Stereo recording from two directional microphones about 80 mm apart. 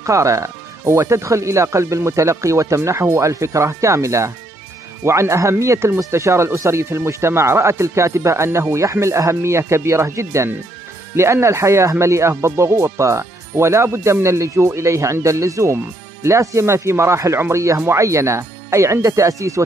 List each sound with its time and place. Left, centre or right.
0.0 s speech: right